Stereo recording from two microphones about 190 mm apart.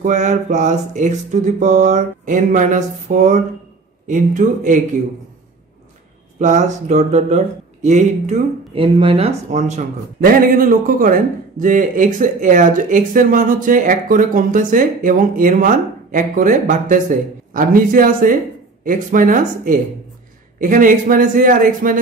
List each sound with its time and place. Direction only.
0.0 s speech: 40° right (ahead or behind)
6.4 s speech: 40° right (ahead or behind)